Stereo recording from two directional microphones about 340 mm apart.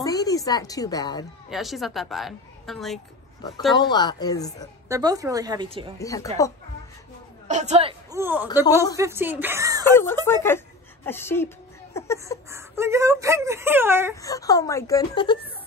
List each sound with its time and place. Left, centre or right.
0.0 s a woman's voice: centre
1.5 s a woman's voice: centre
3.7 s speech: centre
4.8 s speech: centre
5.9 s speech: centre
7.4 s speech: centre
10.2 s speech: centre
12.4 s speech: centre
14.2 s speech: centre